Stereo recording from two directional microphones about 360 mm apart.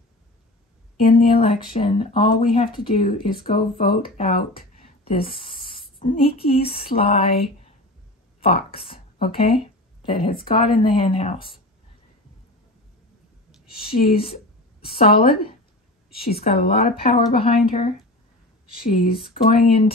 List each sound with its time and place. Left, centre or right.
0.9 s speech: centre
13.9 s speech: centre
18.9 s speech: left